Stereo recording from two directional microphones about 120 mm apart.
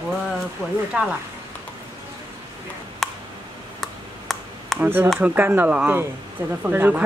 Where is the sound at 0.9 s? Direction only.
10° right (ahead or behind).